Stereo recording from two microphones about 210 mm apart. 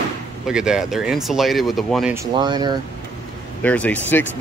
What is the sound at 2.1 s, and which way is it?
Speech, 20° right (ahead or behind).